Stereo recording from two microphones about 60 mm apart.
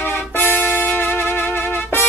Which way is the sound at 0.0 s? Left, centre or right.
Left.